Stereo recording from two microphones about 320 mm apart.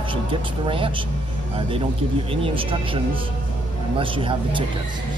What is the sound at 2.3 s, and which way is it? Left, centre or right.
Speech, centre.